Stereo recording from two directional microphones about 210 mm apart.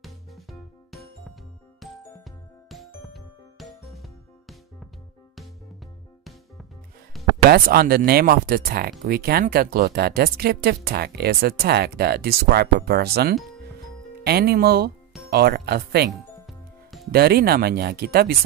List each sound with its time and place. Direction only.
0.0 s music: centre (ahead or behind)
7.4 s speech: 45° right (ahead or behind)
16.1 s music: centre (ahead or behind)
17.1 s speech: 50° right (ahead or behind)